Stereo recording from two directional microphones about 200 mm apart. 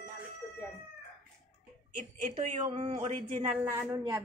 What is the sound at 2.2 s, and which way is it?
Speech, 30° right (ahead or behind).